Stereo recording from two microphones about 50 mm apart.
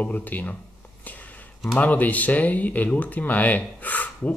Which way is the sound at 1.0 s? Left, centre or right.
Left.